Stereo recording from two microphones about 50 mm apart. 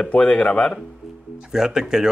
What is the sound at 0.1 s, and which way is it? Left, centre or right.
Speech, left.